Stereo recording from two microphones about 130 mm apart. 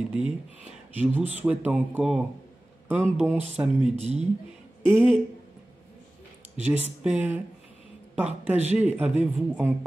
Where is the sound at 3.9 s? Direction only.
60° right (ahead or behind).